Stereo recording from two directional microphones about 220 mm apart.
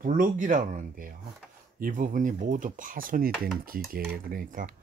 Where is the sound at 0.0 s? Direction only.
35° right (ahead or behind).